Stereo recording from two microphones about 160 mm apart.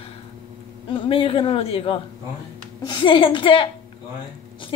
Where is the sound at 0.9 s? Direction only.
35° left (ahead or behind).